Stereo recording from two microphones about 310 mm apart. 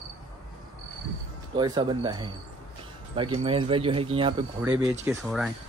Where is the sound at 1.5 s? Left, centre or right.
Centre.